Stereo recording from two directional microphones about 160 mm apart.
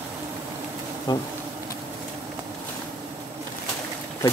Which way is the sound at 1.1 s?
25° left (ahead or behind).